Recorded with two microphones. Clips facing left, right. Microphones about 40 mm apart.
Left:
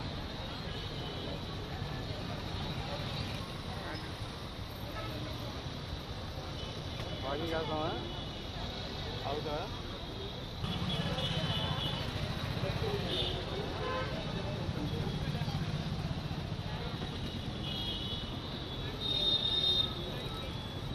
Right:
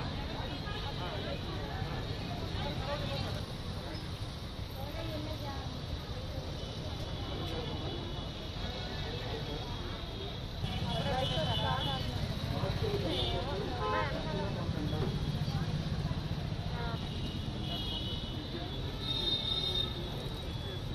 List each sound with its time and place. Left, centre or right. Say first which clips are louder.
7.2 s vehicle: left 7 dB; left
11.0 s vehicle: right 6 dB; right
12.6 s a sound: right 1 dB; left
13.3 s vehicle: right 2 dB; right
15.1 s vehicle: even; left
19.1 s music: left 3 dB; left